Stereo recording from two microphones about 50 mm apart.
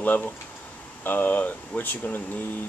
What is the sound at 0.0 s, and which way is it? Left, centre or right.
Speech, left.